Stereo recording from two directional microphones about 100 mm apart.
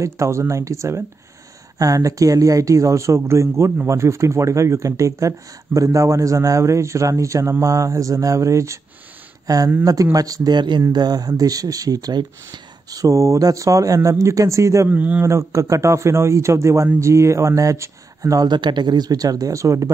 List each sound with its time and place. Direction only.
0.0 s speech: 30° right (ahead or behind)
14.9 s a man's voice: 15° right (ahead or behind)
15.2 s speech: 30° right (ahead or behind)
18.5 s speech: 50° right (ahead or behind); by 19.9 s 30° right (ahead or behind)